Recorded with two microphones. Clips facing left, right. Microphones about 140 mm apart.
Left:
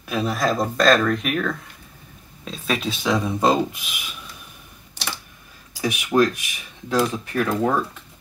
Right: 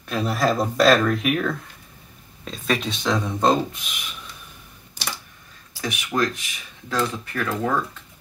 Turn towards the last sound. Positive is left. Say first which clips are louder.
# left 3 dB
turn(degrees=15)  # may be behind; listen again after turning